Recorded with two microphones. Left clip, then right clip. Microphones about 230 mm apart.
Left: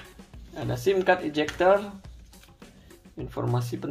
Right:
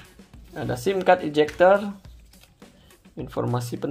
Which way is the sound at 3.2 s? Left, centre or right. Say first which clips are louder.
Right 3 dB; right.